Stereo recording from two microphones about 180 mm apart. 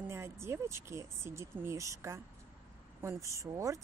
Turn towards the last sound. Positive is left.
turn(degrees=-15)  # may be behind; listen again after turning